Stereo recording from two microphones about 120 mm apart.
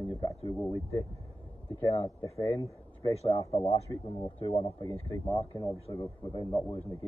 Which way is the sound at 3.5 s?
60° left (ahead or behind).